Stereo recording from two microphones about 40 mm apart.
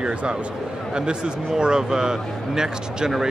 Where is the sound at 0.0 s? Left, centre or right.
Right.